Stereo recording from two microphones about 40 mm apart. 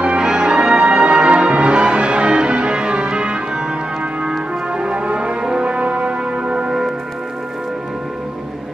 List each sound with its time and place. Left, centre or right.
0.0 s music: right